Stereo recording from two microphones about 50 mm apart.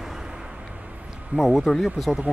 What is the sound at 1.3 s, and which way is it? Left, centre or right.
Speech, right.